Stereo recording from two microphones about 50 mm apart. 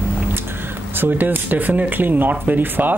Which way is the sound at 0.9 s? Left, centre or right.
Right.